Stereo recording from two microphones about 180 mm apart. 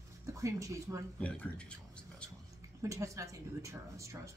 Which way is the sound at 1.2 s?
5° left (ahead or behind).